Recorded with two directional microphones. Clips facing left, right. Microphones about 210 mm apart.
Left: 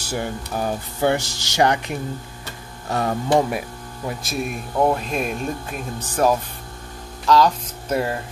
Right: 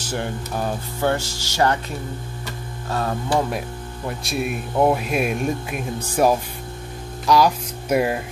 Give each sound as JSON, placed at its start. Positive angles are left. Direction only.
{"t": 0.0, "sound": "speech", "side_deg": 10}
{"t": 4.1, "sound": "speech", "side_deg": 0}
{"t": 7.2, "sound": "music", "side_deg": -10}